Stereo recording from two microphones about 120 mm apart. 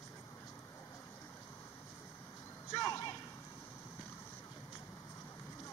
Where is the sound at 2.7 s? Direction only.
25° left (ahead or behind).